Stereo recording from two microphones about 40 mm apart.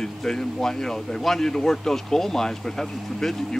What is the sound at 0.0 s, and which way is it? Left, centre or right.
Speech, centre.